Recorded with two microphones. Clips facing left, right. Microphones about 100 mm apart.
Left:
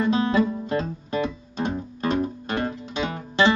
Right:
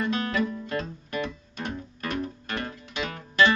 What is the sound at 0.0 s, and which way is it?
Guitar, 25° left (ahead or behind).